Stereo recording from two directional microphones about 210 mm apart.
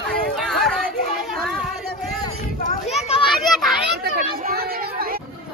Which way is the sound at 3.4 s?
Centre (ahead or behind).